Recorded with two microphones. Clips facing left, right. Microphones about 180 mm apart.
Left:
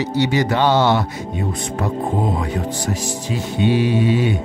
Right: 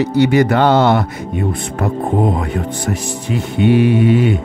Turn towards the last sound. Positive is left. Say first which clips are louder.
# right 5 dB
turn(degrees=-55)  # may be behind; listen again after turning